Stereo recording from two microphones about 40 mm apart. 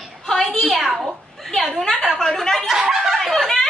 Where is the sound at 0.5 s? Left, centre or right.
Left.